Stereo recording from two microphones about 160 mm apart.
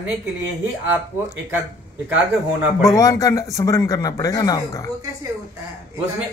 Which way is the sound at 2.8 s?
20° left (ahead or behind).